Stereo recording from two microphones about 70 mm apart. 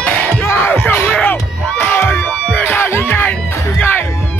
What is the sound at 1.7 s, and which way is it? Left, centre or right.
Crowd, left.